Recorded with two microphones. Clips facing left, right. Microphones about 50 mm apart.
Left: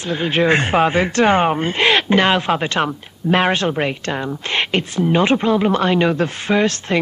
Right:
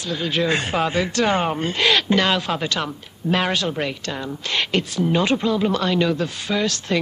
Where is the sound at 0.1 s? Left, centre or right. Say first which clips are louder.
Left 5 dB; left.